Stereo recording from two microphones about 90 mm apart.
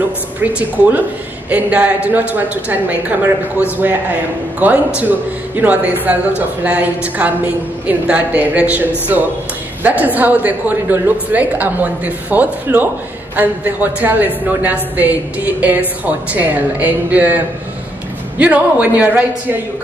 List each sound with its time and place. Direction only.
0.4 s a woman's voice: 15° right (ahead or behind)
18.4 s a woman's voice: 15° right (ahead or behind)